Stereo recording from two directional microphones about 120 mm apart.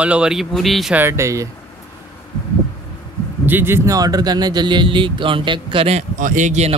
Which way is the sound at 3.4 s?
15° right (ahead or behind).